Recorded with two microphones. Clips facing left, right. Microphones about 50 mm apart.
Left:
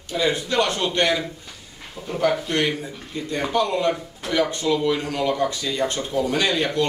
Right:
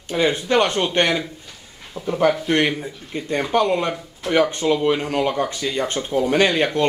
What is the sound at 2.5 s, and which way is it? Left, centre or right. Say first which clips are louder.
Speech: right 4 dB; right.